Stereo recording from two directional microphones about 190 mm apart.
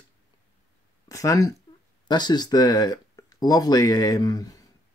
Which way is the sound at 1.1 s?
20° left (ahead or behind).